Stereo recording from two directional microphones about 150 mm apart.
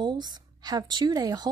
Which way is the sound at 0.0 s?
30° right (ahead or behind).